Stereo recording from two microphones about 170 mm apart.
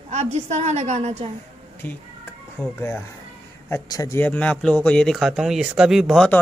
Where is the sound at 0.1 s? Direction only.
40° right (ahead or behind).